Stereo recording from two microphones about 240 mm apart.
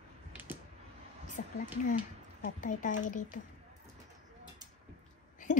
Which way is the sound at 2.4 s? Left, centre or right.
Left.